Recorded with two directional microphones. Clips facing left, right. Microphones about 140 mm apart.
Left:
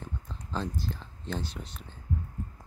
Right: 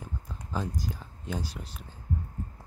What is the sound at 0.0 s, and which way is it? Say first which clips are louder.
Speech: even; 10° right (ahead or behind).